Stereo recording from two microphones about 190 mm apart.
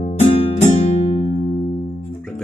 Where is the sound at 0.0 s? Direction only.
30° left (ahead or behind).